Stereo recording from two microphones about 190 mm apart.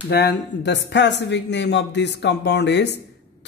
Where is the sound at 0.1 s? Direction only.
65° left (ahead or behind).